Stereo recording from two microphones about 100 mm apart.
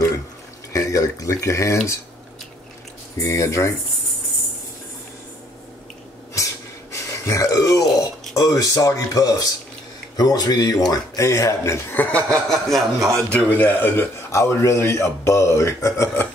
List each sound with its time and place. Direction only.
0.7 s speech: 35° left (ahead or behind)
3.2 s speech: 30° left (ahead or behind)
6.9 s a sound: 30° left (ahead or behind)
8.4 s speech: 35° left (ahead or behind)
11.9 s speech: 15° left (ahead or behind)
12.4 s speech: centre (ahead or behind)
13.1 s a man's voice: 15° left (ahead or behind)